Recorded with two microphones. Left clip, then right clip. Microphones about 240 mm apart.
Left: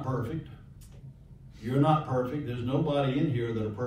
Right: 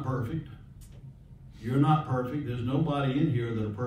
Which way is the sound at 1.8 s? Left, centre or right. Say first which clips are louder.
Left 1 dB; centre.